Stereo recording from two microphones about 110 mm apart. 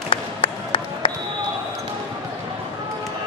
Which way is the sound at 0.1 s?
50° left (ahead or behind).